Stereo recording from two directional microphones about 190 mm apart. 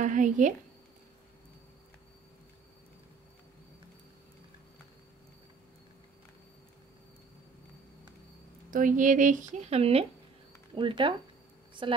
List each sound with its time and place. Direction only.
0.0 s speech: 40° right (ahead or behind)
8.6 s speech: 45° right (ahead or behind); by 11.1 s 25° right (ahead or behind)